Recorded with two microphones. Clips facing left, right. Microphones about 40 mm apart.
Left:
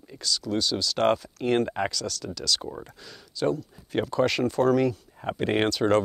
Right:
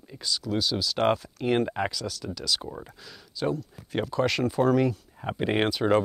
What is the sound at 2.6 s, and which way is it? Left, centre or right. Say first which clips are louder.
Speech: left 2 dB; centre.